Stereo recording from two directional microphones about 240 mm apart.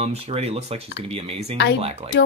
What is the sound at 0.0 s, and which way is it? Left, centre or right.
Speech, right.